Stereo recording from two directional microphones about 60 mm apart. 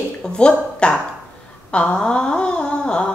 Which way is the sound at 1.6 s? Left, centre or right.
Centre.